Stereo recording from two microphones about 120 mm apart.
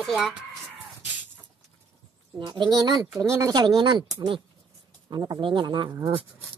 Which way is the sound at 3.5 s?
35° right (ahead or behind).